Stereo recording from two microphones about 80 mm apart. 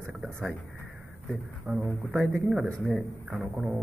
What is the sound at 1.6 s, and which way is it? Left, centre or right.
Speech, centre.